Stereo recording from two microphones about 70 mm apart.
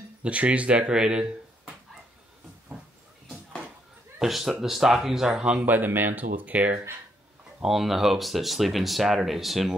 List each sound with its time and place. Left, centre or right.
0.2 s speech: centre
4.2 s speech: centre
5.7 s speech: right
7.6 s speech: centre